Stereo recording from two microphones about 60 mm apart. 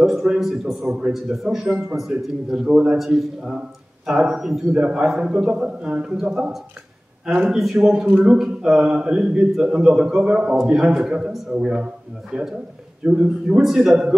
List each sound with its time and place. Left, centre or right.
0.0 s a man's voice: centre
2.7 s a man's voice: centre
7.5 s a man's voice: centre
10.5 s a man's voice: centre
13.6 s a man's voice: centre